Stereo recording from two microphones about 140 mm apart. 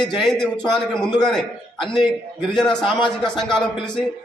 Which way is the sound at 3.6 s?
5° left (ahead or behind).